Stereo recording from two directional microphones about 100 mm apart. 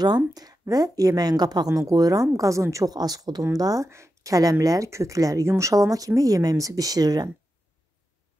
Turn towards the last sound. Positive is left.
turn(degrees=-40)  # may be behind; listen again after turning